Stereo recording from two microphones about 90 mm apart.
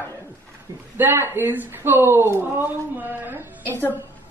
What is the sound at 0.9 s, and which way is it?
Speech, 25° right (ahead or behind).